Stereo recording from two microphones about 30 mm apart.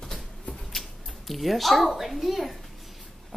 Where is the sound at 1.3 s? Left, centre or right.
Centre.